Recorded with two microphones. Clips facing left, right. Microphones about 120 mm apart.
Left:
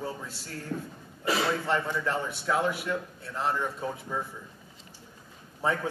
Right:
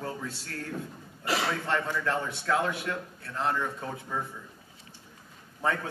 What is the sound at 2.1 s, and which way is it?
Speech, 5° left (ahead or behind).